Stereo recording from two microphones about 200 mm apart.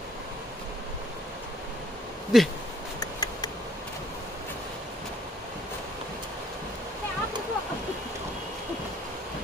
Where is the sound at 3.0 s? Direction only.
20° left (ahead or behind).